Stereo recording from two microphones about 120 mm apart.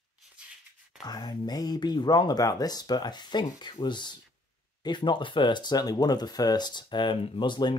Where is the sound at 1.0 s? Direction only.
35° left (ahead or behind).